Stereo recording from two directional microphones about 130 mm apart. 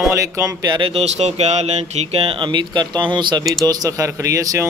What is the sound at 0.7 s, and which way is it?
Speech, 45° right (ahead or behind).